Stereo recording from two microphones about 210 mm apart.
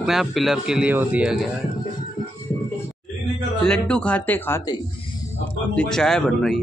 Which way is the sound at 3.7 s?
5° left (ahead or behind).